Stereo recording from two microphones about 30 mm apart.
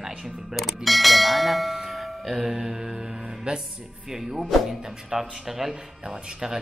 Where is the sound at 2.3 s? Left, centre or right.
Centre.